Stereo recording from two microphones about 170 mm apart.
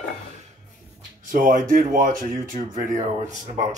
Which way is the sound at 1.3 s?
50° right (ahead or behind).